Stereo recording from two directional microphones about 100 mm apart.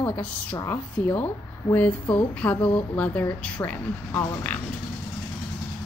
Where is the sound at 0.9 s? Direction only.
20° left (ahead or behind).